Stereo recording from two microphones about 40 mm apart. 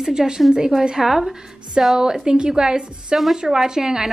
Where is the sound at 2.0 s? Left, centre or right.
Centre.